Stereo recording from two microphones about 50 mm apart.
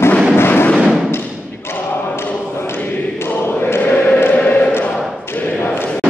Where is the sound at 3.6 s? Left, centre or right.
Left.